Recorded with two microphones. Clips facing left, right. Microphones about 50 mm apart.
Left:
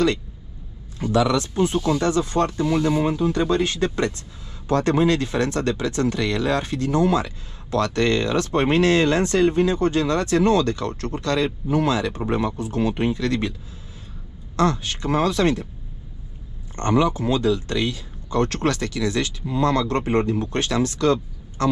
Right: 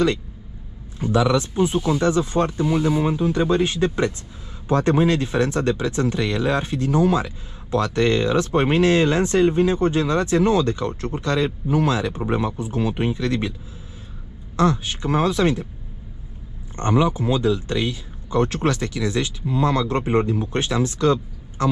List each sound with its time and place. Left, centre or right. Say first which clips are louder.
1.0 s a man's voice: right 1 dB; right
14.6 s speech: right 1 dB; right
16.7 s speech: even; centre